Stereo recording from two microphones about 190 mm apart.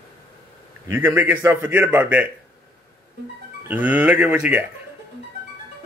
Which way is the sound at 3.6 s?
10° right (ahead or behind).